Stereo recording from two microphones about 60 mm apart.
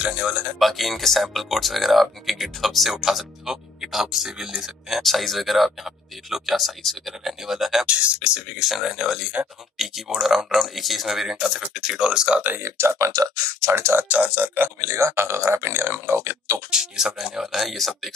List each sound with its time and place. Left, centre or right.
0.0 s speech: centre
0.6 s speech: centre
7.8 s speech: centre
8.5 s speech: centre
12.6 s speech: right
13.1 s speech: right
14.0 s speech: right
14.8 s speech: right
16.7 s speech: centre